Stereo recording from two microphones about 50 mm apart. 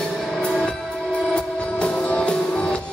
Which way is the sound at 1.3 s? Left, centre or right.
Left.